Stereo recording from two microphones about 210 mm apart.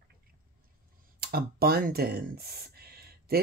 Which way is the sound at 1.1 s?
45° right (ahead or behind).